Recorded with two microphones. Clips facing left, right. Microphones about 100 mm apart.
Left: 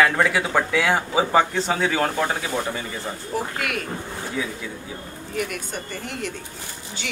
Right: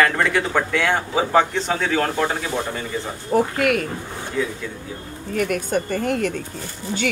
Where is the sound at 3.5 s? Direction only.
45° right (ahead or behind).